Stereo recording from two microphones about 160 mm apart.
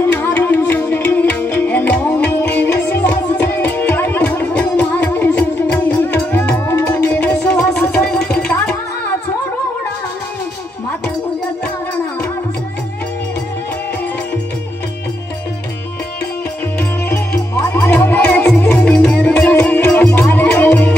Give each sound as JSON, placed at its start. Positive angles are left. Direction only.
{"t": 0.0, "sound": "music", "side_deg": 15}
{"t": 7.4, "sound": "a sound", "side_deg": 5}
{"t": 7.8, "sound": "music", "side_deg": 10}
{"t": 17.6, "sound": "music", "side_deg": 15}